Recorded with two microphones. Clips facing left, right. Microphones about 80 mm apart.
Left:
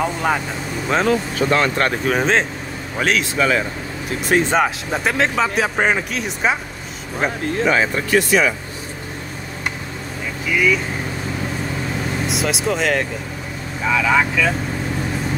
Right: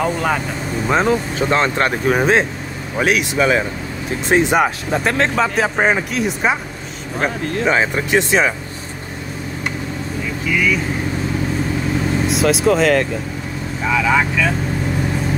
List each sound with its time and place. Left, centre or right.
0.0 s speech: centre
0.8 s speech: centre
1.9 s speech: centre
4.6 s speech: centre
7.6 s speech: centre
12.3 s speech: centre